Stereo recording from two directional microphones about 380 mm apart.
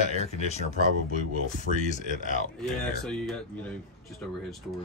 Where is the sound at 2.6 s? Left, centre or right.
Centre.